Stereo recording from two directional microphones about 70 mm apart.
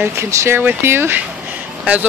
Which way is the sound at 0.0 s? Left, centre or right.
Right.